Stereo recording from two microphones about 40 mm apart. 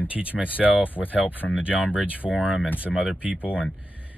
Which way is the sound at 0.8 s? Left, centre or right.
Left.